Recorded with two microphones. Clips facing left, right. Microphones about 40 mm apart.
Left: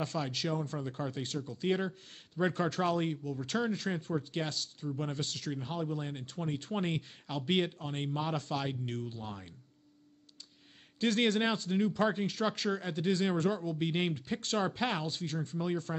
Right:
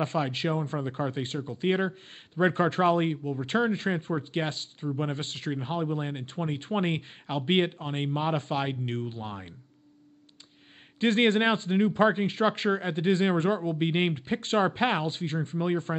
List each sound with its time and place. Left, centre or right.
0.0 s speech: right
11.0 s speech: right